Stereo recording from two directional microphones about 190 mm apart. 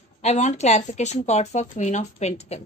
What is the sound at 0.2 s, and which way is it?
A woman's voice, 35° left (ahead or behind).